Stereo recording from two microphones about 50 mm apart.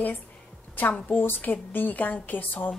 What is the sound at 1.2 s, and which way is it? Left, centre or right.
A woman's voice, left.